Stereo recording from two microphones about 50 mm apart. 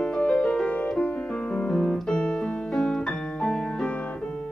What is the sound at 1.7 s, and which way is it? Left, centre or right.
Piano, centre.